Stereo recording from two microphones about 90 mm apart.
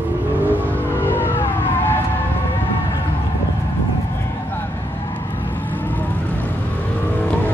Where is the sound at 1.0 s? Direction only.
25° left (ahead or behind).